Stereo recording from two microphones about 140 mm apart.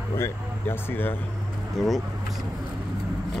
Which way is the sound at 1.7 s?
Centre (ahead or behind).